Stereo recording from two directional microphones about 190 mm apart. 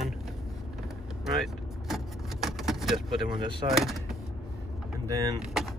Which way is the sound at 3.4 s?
25° right (ahead or behind).